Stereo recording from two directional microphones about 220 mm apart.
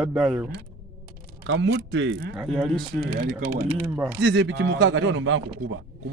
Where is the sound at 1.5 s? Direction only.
55° right (ahead or behind).